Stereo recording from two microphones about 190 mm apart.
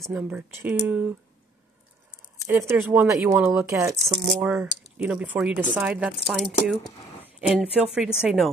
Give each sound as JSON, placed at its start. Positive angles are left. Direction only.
{"t": 0.0, "sound": "speech", "side_deg": -10}
{"t": 2.6, "sound": "a woman's voice", "side_deg": -5}